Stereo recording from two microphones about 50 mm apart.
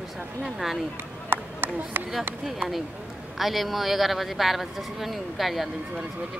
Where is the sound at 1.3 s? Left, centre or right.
Right.